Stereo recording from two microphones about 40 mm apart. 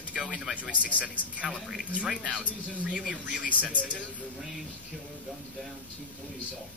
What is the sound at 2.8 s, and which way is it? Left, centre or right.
Speech, right.